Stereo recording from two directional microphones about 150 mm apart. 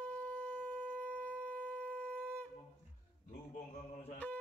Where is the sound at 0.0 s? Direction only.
10° left (ahead or behind).